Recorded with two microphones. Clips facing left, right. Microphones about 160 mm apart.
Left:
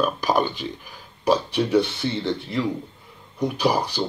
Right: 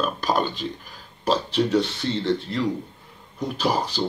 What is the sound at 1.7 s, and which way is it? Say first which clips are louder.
Speech: left 2 dB; 15° left (ahead or behind).